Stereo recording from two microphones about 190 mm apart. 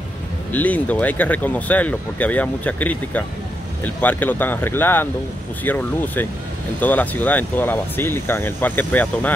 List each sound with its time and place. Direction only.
0.5 s speech: 10° left (ahead or behind)